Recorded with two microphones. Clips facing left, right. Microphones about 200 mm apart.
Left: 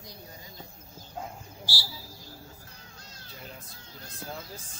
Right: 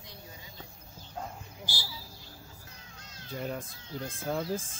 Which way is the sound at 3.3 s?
50° right (ahead or behind).